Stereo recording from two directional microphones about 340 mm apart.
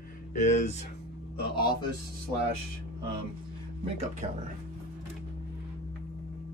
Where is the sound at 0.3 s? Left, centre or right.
Left.